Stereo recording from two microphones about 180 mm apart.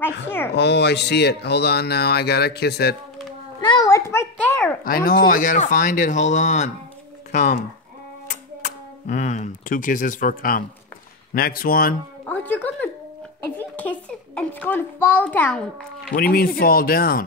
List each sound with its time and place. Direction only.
0.0 s speech: 10° left (ahead or behind)
0.6 s speech: 70° left (ahead or behind)
3.6 s a sound: 20° left (ahead or behind)
4.8 s speech: 55° left (ahead or behind)
12.3 s music: 10° left (ahead or behind)
13.6 s a child's voice: 10° left (ahead or behind)
16.1 s speech: 55° left (ahead or behind)